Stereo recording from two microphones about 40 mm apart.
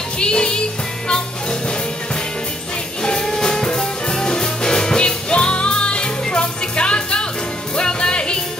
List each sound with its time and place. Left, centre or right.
0.2 s music: left
3.0 s music: left